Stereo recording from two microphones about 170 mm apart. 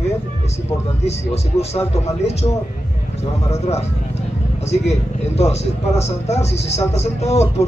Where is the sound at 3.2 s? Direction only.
40° left (ahead or behind).